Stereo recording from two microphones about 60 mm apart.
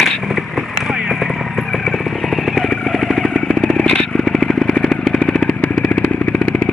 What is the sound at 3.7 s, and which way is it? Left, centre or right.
Vehicle, centre.